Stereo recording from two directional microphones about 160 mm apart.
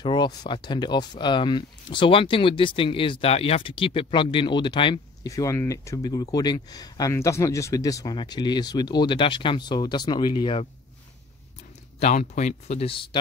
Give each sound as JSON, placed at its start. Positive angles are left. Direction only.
{"t": 0.0, "sound": "speech", "side_deg": 25}
{"t": 12.0, "sound": "speech", "side_deg": 45}